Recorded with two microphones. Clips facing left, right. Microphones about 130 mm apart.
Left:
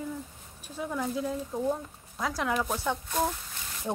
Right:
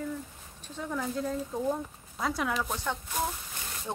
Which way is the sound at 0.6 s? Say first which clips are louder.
Left 2 dB; 10° left (ahead or behind).